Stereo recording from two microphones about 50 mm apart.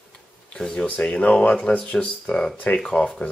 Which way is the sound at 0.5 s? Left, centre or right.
Centre.